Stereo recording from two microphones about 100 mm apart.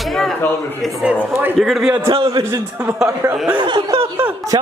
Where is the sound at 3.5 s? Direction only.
55° right (ahead or behind).